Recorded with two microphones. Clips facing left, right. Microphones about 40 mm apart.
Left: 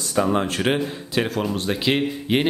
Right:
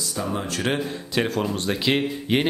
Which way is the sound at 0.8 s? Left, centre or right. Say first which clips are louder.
Left 1 dB; centre.